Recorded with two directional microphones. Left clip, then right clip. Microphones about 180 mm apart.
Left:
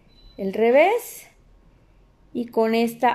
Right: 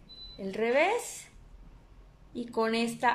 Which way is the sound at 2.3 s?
35° left (ahead or behind).